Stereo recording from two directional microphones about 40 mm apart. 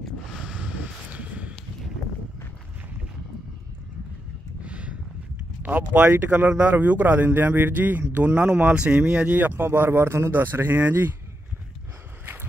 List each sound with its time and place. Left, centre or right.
1.1 s a sound: right
4.6 s a sound: right
5.6 s speech: right
7.2 s speech: right
8.5 s speech: right
9.3 s speech: right
9.6 s a man's voice: right
10.8 s speech: right